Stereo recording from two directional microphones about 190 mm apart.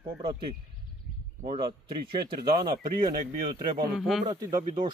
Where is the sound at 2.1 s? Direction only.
25° right (ahead or behind).